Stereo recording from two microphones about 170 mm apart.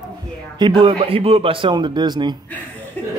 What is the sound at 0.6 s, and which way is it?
Speech, 30° right (ahead or behind).